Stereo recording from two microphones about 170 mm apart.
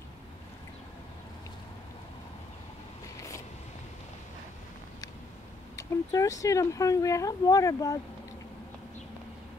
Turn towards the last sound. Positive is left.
turn(degrees=20)  # may be behind; listen again after turning